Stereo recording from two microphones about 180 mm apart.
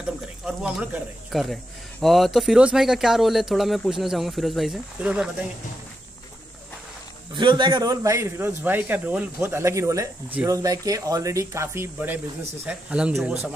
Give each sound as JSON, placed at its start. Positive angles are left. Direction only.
{"t": 0.5, "sound": "speech", "side_deg": -5}
{"t": 7.3, "sound": "a man's voice", "side_deg": -25}